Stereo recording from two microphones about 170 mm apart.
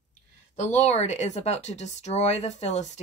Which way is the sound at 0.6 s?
40° left (ahead or behind).